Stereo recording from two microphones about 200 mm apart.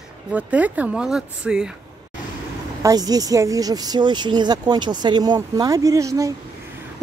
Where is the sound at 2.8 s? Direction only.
20° right (ahead or behind).